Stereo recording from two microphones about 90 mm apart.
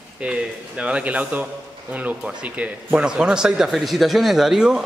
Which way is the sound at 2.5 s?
10° right (ahead or behind).